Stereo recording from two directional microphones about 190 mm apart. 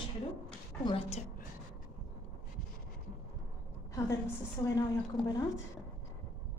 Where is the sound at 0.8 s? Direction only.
30° left (ahead or behind).